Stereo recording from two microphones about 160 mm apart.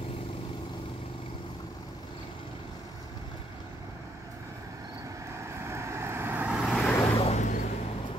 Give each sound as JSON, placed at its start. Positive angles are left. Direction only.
{"t": 5.4, "sound": "vehicle", "side_deg": -15}
{"t": 7.2, "sound": "vehicle", "side_deg": 45}